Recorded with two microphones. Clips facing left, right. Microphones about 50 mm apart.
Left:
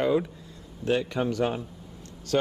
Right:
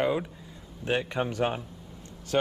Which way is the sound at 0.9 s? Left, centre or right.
Right.